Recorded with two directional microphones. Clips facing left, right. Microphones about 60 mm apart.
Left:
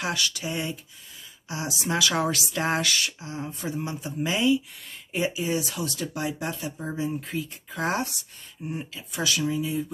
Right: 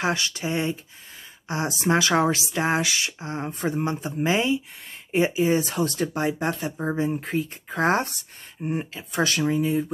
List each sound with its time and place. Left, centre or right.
0.0 s speech: right
3.2 s speech: right